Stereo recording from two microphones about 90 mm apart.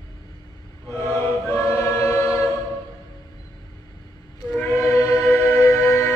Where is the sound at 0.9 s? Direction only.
25° left (ahead or behind).